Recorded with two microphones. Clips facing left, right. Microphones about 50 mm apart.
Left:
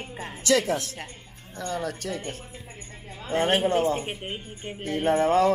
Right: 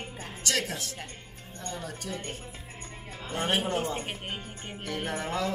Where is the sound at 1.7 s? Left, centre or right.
Left.